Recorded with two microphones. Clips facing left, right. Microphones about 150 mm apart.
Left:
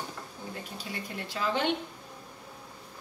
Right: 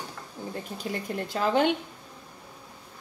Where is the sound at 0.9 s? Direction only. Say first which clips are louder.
Right 9 dB; 50° right (ahead or behind).